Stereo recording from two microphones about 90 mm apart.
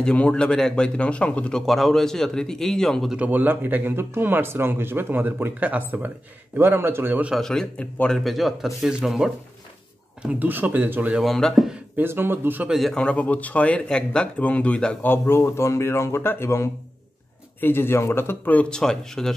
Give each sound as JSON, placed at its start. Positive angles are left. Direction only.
{"t": 0.0, "sound": "speech", "side_deg": 10}
{"t": 3.3, "sound": "speech", "side_deg": -20}
{"t": 7.3, "sound": "speech", "side_deg": 5}
{"t": 10.2, "sound": "speech", "side_deg": -20}
{"t": 11.2, "sound": "speech", "side_deg": 0}
{"t": 12.0, "sound": "speech", "side_deg": -25}
{"t": 12.6, "sound": "speech", "side_deg": 0}
{"t": 12.9, "sound": "speech", "side_deg": 10}